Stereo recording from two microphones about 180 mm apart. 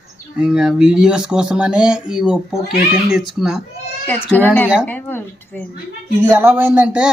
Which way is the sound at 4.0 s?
10° left (ahead or behind).